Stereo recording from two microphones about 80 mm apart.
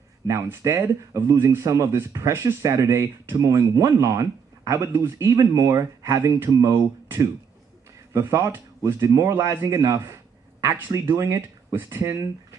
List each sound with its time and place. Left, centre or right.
0.3 s speech: right
8.1 s speech: right